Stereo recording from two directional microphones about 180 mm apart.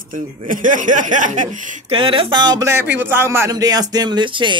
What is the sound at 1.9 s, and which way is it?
Speech, 30° right (ahead or behind).